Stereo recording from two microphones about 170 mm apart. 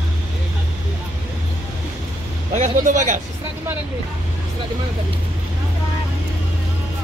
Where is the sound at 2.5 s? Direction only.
45° right (ahead or behind).